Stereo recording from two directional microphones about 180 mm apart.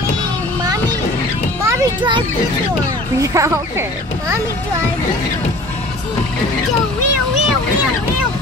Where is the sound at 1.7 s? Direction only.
25° right (ahead or behind).